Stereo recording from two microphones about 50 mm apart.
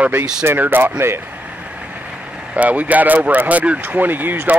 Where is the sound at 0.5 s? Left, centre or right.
Right.